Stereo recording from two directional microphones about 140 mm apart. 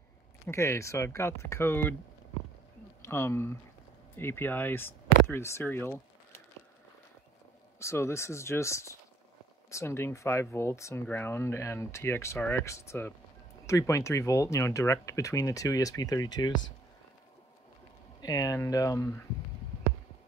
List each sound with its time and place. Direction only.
0.5 s speech: 20° left (ahead or behind)
3.0 s speech: 15° left (ahead or behind)
7.8 s speech: 20° left (ahead or behind)
18.2 s speech: 25° left (ahead or behind)